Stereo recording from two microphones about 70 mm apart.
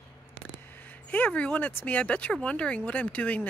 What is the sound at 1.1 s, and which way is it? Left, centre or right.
Speech, left.